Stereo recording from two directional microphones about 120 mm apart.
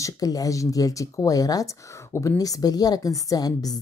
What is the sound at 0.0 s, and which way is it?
Speech, 30° left (ahead or behind).